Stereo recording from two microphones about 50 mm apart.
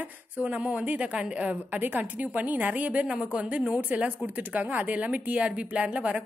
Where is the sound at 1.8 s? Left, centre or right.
Right.